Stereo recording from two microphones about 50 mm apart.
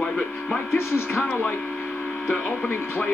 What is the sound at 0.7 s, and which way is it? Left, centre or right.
Speech, left.